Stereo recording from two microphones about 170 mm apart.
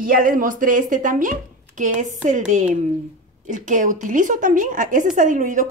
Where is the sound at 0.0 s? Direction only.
55° right (ahead or behind).